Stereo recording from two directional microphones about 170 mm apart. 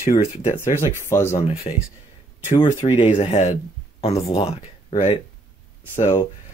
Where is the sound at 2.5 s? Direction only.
30° left (ahead or behind).